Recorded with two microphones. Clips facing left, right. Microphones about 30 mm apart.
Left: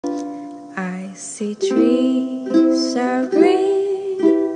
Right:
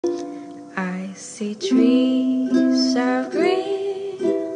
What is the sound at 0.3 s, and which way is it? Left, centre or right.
Music, centre.